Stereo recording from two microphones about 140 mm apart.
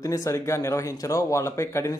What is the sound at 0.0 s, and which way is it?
A man's voice, 25° left (ahead or behind).